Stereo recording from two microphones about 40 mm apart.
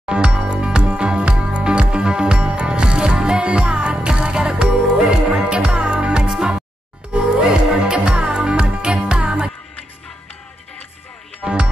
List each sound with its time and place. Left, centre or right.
0.1 s music: right
11.4 s music: right